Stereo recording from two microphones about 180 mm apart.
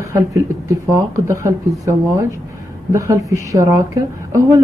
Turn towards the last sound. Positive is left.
turn(degrees=-15)  # may be behind; listen again after turning